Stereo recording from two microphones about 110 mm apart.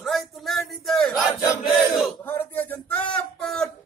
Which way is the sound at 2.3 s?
15° left (ahead or behind).